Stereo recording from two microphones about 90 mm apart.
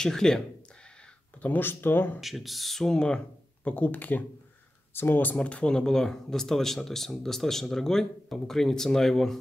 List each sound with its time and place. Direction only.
0.0 s speech: 5° left (ahead or behind)
1.4 s speech: 20° left (ahead or behind)
2.1 s speech: centre (ahead or behind)